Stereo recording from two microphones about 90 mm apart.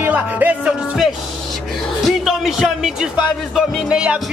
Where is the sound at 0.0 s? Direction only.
20° right (ahead or behind).